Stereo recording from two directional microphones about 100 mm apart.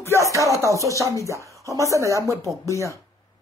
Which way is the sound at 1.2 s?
30° right (ahead or behind).